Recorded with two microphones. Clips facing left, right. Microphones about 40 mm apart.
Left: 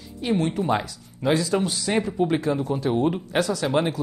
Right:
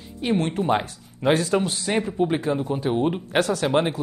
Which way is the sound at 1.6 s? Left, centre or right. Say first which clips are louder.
Left 1 dB; right.